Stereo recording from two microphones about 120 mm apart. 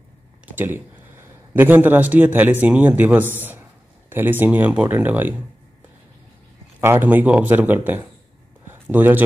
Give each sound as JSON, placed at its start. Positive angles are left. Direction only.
{"t": 0.5, "sound": "a man's voice", "side_deg": -15}
{"t": 6.8, "sound": "a man's voice", "side_deg": -20}